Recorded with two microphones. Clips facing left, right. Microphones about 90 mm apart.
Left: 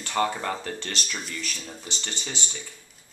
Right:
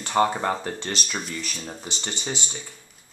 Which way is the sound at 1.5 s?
30° right (ahead or behind).